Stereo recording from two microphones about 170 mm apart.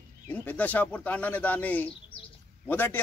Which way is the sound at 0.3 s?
10° left (ahead or behind).